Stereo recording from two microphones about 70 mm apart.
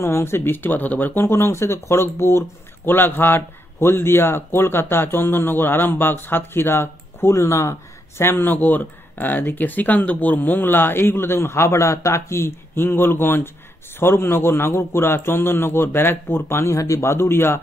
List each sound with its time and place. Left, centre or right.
0.0 s speech: left
1.2 s speech: left